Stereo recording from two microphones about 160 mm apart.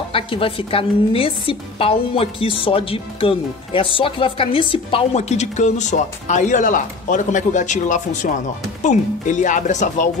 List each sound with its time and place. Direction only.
0.1 s a woman's voice: 35° left (ahead or behind); by 10.0 s 50° left (ahead or behind)